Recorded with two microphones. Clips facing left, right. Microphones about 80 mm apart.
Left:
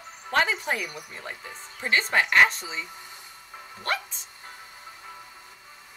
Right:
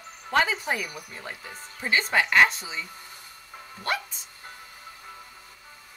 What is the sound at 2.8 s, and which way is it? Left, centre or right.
Train, left.